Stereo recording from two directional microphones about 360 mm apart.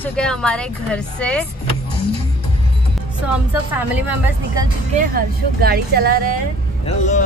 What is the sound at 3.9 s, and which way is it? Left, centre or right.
Speech, centre.